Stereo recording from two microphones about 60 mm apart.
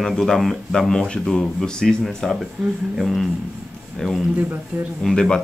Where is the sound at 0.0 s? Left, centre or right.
Centre.